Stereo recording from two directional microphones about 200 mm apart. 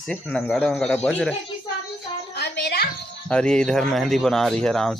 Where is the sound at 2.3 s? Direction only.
55° left (ahead or behind).